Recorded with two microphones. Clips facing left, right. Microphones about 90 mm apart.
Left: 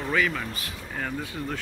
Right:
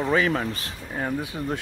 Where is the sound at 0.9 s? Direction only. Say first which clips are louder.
Right 4 dB; 20° right (ahead or behind).